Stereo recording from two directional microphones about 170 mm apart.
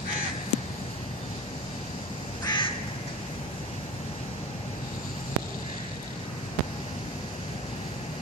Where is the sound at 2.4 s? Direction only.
30° left (ahead or behind).